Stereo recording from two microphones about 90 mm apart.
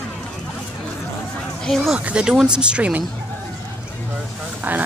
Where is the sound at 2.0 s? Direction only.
15° right (ahead or behind).